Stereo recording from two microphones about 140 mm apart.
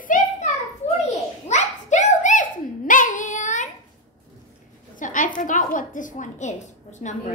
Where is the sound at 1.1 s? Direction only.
55° left (ahead or behind).